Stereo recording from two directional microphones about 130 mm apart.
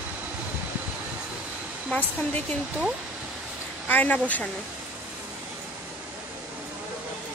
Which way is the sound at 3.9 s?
15° left (ahead or behind).